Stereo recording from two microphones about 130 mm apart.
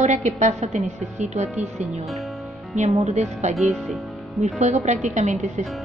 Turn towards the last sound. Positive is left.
turn(degrees=-65)  # may be behind; listen again after turning